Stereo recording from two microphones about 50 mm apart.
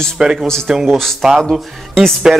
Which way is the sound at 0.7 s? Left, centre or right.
Centre.